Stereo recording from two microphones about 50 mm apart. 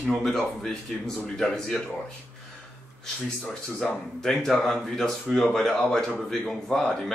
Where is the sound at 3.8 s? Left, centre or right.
Centre.